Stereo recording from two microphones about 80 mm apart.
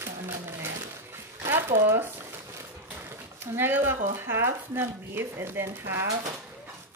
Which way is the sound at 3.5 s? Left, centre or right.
Right.